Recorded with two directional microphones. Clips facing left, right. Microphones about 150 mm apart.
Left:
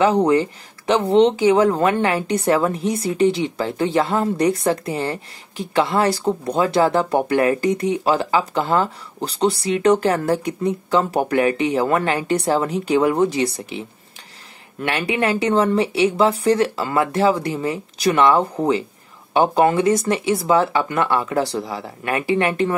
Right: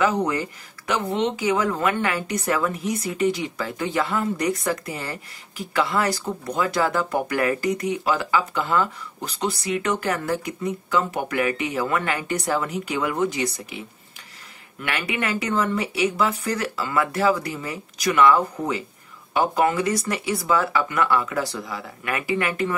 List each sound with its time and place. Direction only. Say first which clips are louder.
0.0 s speech: left 6 dB; 30° left (ahead or behind)